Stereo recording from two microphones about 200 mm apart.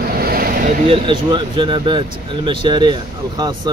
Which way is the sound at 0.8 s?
25° right (ahead or behind).